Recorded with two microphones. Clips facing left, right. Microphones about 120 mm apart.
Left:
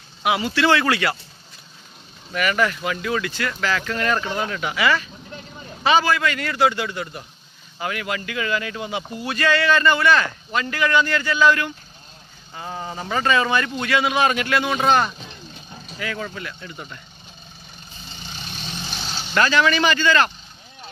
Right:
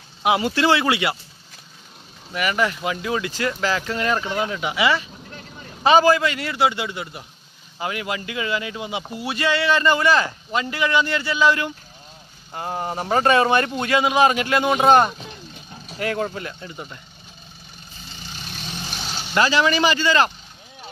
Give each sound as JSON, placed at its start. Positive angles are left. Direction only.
{"t": 0.4, "sound": "speech", "side_deg": -50}
{"t": 0.7, "sound": "speech", "side_deg": -20}
{"t": 2.3, "sound": "speech", "side_deg": -20}
{"t": 3.3, "sound": "speech", "side_deg": -35}
{"t": 5.9, "sound": "a man's voice", "side_deg": -35}
{"t": 6.2, "sound": "speech", "side_deg": -20}
{"t": 10.5, "sound": "speech", "side_deg": -20}
{"t": 12.5, "sound": "a man's voice", "side_deg": -55}
{"t": 14.3, "sound": "speech", "side_deg": -20}
{"t": 14.9, "sound": "speech", "side_deg": -45}
{"t": 16.6, "sound": "speech", "side_deg": -20}
{"t": 18.7, "sound": "vehicle", "side_deg": -10}
{"t": 19.4, "sound": "speech", "side_deg": -25}
{"t": 20.1, "sound": "speech", "side_deg": -15}